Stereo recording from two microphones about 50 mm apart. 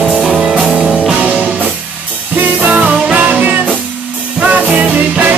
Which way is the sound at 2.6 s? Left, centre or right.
Right.